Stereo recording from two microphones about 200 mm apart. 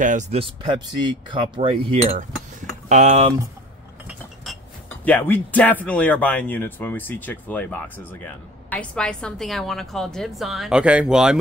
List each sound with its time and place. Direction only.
0.0 s cutlery: 40° right (ahead or behind)
2.9 s speech: 35° right (ahead or behind)
4.8 s a woman's voice: 10° left (ahead or behind)